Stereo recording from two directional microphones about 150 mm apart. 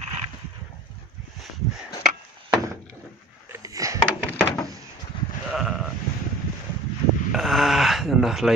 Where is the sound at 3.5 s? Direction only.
20° right (ahead or behind).